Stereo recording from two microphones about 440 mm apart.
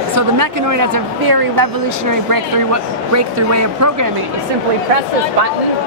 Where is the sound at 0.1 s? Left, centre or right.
Right.